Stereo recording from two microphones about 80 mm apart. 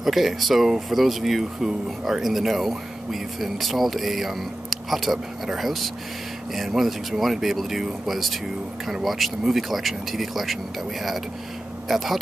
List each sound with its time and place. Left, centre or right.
0.0 s speech: centre